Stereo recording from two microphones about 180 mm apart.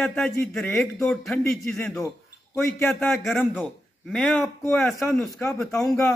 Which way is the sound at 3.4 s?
10° left (ahead or behind).